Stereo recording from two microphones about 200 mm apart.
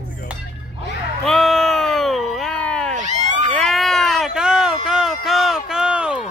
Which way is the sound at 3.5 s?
Centre (ahead or behind).